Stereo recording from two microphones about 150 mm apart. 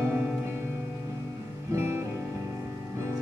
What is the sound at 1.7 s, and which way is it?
Music, 15° right (ahead or behind).